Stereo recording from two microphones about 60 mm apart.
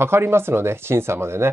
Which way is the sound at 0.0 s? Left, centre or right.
Right.